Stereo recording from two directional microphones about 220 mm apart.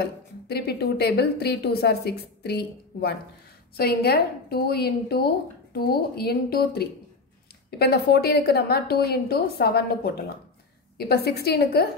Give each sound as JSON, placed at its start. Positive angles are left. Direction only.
{"t": 0.0, "sound": "a woman's voice", "side_deg": 45}